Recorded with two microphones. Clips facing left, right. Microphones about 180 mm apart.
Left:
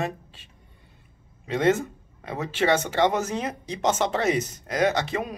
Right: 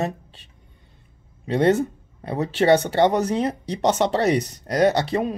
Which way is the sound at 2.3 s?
35° right (ahead or behind).